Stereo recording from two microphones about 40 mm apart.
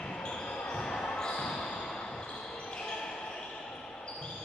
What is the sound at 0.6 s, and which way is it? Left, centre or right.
Basketball bounce, centre.